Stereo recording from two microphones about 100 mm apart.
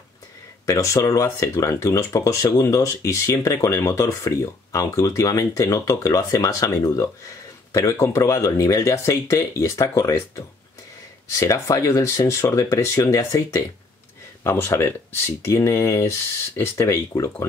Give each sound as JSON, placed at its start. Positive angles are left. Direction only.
{"t": 0.7, "sound": "speech", "side_deg": 30}